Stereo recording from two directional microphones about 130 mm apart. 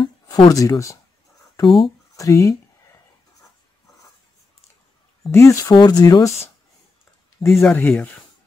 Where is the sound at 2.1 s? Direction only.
25° left (ahead or behind).